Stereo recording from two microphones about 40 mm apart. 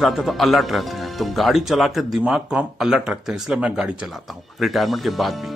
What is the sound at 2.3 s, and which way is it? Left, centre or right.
Speech, centre.